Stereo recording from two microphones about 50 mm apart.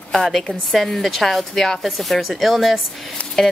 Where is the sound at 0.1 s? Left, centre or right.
Centre.